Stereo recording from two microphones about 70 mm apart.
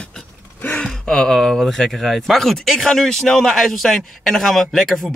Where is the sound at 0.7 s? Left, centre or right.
Centre.